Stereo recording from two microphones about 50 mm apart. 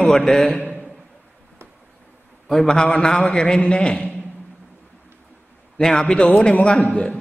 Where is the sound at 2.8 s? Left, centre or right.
Left.